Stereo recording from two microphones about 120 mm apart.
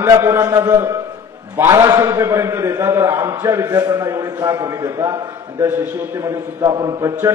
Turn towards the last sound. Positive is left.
turn(degrees=-40)  # may be behind; listen again after turning